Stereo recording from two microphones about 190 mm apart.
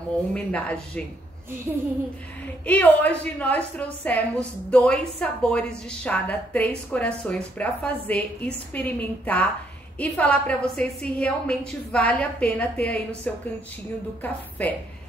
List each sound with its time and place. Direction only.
0.3 s a woman's voice: 5° left (ahead or behind)
2.6 s a woman's voice: 5° left (ahead or behind)
14.6 s a woman's voice: 5° left (ahead or behind)